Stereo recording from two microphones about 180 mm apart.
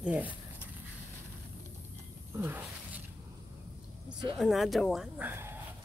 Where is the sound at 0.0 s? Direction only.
10° right (ahead or behind).